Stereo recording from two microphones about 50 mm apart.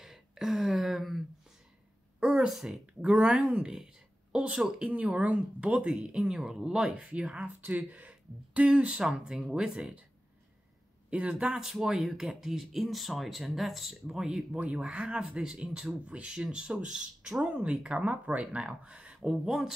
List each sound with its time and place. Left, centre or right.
0.0 s a sound: centre
2.1 s a sound: centre
2.5 s a woman's voice: centre
6.9 s speech: right
7.6 s speech: right
9.0 s speech: centre
9.4 s speech: centre
11.1 s speech: right
11.5 s speech: centre
14.5 s speech: right